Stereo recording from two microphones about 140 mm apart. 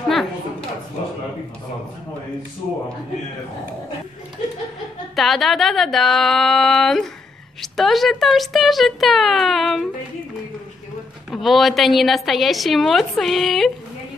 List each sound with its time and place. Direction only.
0.1 s a sound: centre (ahead or behind)
5.1 s a woman's voice: centre (ahead or behind)
11.2 s a woman's voice: centre (ahead or behind)